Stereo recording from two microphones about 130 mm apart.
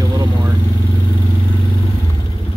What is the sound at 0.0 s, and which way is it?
Vehicle, 30° right (ahead or behind).